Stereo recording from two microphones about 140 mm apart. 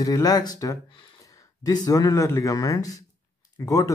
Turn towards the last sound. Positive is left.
turn(degrees=25)  # may be behind; listen again after turning